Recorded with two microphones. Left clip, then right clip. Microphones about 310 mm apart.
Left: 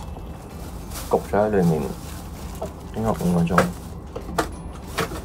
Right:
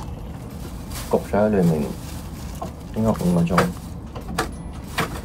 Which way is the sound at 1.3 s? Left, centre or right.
Centre.